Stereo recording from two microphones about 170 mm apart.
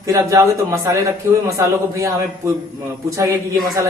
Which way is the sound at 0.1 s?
20° right (ahead or behind).